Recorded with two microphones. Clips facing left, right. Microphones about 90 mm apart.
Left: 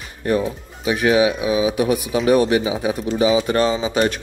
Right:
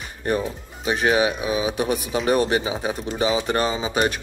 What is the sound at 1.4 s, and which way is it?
Speech, 15° left (ahead or behind).